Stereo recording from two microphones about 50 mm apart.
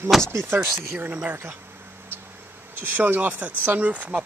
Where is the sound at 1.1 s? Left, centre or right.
Right.